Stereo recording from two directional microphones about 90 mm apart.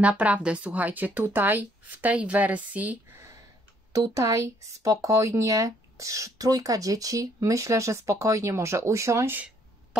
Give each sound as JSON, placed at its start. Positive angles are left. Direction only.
{"t": 0.2, "sound": "speech", "side_deg": -15}
{"t": 3.9, "sound": "speech", "side_deg": -40}